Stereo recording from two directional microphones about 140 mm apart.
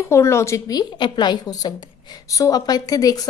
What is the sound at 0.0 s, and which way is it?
A woman's voice, 20° left (ahead or behind).